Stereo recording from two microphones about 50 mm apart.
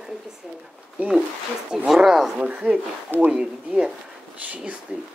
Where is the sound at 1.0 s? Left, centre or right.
Right.